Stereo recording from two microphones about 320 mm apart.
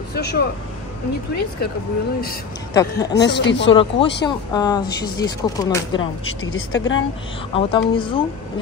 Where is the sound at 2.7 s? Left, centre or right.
Centre.